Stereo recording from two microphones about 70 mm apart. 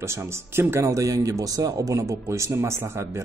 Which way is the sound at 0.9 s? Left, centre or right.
Right.